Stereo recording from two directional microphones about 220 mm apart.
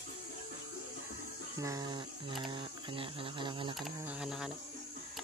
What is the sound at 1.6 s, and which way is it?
Speech, 15° right (ahead or behind).